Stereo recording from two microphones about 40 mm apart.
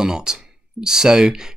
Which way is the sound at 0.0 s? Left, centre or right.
Centre.